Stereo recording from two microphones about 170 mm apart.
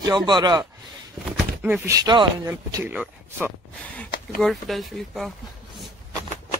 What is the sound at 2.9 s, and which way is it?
Speech, 10° right (ahead or behind).